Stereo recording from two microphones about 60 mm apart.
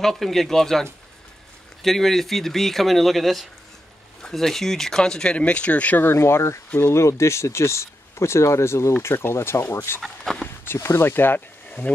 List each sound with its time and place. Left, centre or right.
0.0 s speech: centre; by 6.0 s left
6.0 s speech: left
10.0 s speech: centre
10.6 s speech: left